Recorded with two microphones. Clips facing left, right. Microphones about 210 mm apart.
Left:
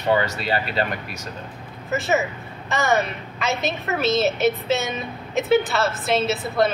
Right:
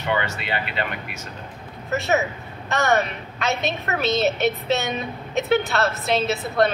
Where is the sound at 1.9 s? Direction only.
Centre (ahead or behind).